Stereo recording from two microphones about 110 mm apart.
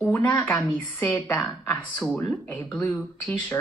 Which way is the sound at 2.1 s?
15° left (ahead or behind).